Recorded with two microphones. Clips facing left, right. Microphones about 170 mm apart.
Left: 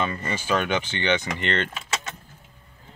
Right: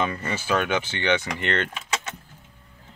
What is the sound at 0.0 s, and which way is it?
Speech, 10° right (ahead or behind).